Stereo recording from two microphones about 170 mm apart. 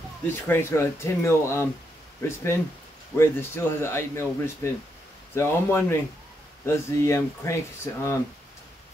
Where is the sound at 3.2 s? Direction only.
15° left (ahead or behind).